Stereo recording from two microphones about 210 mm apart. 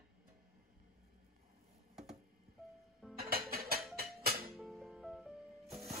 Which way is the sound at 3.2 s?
45° right (ahead or behind).